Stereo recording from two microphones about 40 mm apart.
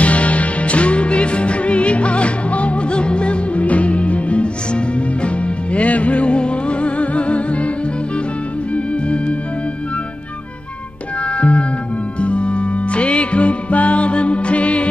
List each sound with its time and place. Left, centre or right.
0.0 s music: left
8.7 s music: left
11.2 s music: left